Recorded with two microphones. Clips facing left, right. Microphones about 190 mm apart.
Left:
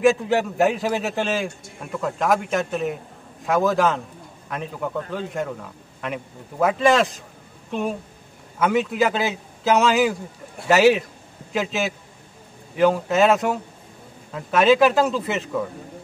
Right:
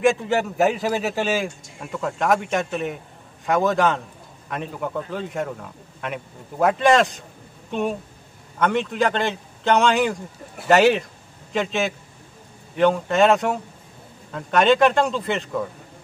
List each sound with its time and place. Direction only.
0.0 s a man's voice: centre (ahead or behind)